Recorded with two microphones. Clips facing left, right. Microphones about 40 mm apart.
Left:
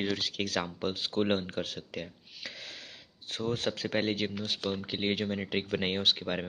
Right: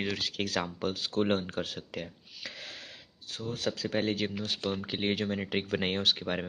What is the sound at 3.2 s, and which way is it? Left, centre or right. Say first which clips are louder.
Speech: left 4 dB; left.